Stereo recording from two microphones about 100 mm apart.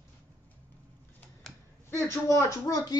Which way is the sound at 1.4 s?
5° left (ahead or behind).